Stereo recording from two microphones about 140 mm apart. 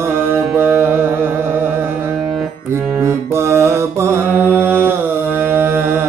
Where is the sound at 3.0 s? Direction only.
20° right (ahead or behind).